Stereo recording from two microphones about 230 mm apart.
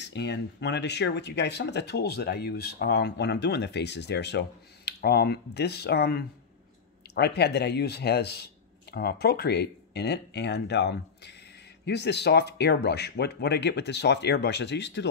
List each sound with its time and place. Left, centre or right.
0.0 s speech: left